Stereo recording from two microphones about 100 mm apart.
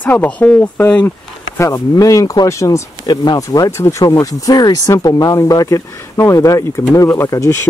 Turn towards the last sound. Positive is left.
turn(degrees=30)  # may be behind; listen again after turning